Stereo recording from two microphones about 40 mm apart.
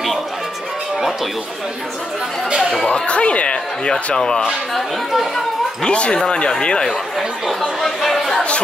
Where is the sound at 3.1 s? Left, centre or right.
Left.